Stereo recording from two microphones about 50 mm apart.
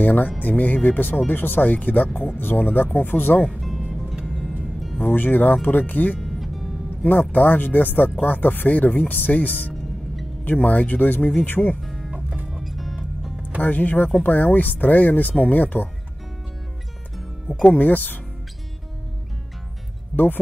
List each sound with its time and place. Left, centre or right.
0.0 s speech: left
3.6 s music: centre
5.0 s speech: left
6.1 s music: centre
7.1 s speech: left
11.8 s music: centre
12.1 s music: right
12.4 s music: centre
13.6 s speech: left
17.6 s speech: left